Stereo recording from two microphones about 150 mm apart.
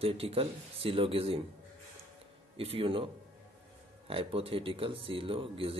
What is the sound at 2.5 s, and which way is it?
Speech, 40° right (ahead or behind).